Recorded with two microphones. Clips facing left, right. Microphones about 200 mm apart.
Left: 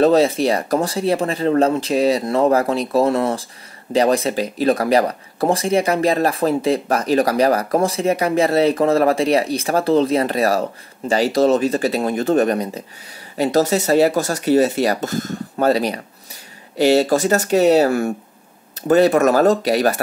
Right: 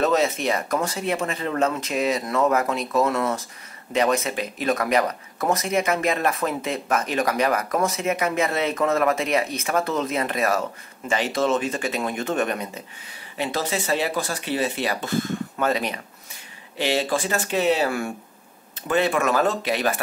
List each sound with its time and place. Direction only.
0.0 s speech: 35° left (ahead or behind)